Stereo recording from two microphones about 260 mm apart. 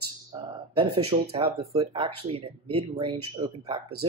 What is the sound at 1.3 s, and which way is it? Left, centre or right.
Speech, right.